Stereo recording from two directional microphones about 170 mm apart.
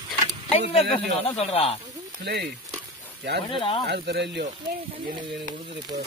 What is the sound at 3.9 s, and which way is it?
Speech, 85° right.